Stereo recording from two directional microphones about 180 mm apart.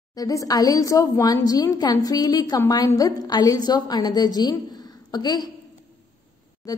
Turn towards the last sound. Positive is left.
turn(degrees=20)  # may be behind; listen again after turning